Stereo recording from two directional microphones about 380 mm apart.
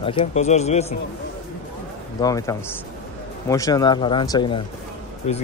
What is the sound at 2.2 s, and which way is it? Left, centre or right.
Speech, centre.